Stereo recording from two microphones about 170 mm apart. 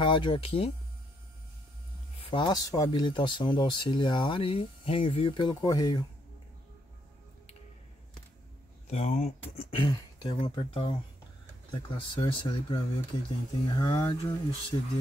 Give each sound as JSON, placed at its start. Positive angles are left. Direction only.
{"t": 0.0, "sound": "speech", "side_deg": 30}
{"t": 2.1, "sound": "speech", "side_deg": 30}
{"t": 8.9, "sound": "speech", "side_deg": 45}
{"t": 9.6, "sound": "speech", "side_deg": 30}